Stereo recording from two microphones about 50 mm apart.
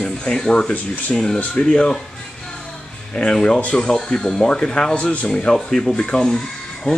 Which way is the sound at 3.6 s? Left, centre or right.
Left.